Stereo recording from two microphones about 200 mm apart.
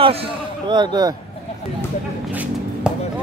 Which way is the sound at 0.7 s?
20° right (ahead or behind).